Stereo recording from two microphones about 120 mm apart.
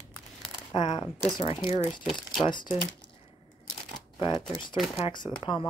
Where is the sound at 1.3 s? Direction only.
40° left (ahead or behind).